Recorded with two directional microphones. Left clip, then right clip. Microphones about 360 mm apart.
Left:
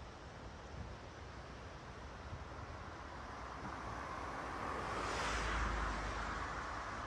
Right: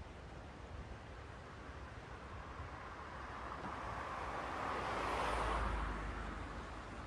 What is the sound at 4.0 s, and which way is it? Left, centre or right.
Vehicle, right.